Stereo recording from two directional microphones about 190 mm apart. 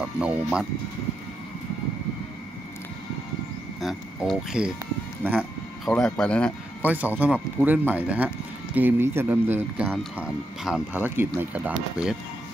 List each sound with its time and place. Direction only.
0.2 s speech: 5° right (ahead or behind)
3.8 s speech: centre (ahead or behind)
5.9 s speech: 5° left (ahead or behind)
6.8 s speech: 10° right (ahead or behind)